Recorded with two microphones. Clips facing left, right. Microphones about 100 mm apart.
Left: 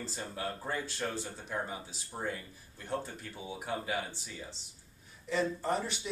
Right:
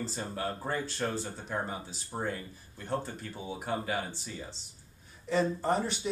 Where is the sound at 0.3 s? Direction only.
30° right (ahead or behind).